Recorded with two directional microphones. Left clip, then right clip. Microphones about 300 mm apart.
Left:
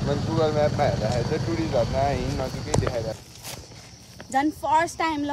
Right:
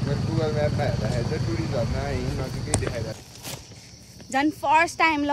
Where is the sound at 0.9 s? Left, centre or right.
Left.